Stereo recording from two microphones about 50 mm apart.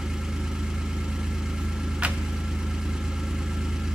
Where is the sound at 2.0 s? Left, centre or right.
Right.